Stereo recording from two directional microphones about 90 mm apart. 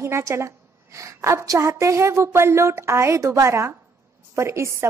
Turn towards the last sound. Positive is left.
turn(degrees=-30)  # may be behind; listen again after turning